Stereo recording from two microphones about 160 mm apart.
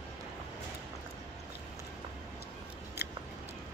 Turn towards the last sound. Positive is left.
turn(degrees=90)